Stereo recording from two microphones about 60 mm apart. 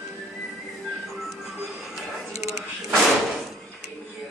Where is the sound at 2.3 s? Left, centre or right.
Right.